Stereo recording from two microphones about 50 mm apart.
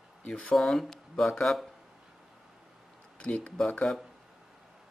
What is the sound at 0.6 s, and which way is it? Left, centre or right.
Speech, centre.